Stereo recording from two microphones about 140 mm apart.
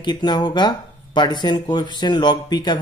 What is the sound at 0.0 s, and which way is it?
Speech, 30° left (ahead or behind).